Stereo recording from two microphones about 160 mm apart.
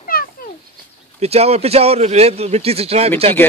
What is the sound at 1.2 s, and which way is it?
A man's voice, 40° right (ahead or behind).